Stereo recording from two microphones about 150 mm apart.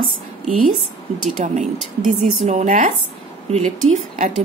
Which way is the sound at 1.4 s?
50° right (ahead or behind).